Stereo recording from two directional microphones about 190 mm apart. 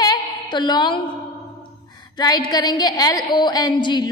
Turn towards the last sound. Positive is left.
turn(degrees=25)  # may be behind; listen again after turning